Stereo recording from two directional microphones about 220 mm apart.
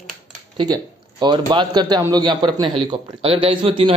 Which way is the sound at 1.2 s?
20° right (ahead or behind).